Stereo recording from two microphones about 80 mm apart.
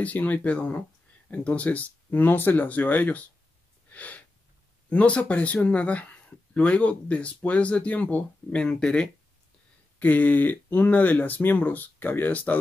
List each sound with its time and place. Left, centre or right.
0.0 s speech: centre
3.9 s sneeze: centre
4.8 s speech: centre
9.9 s speech: left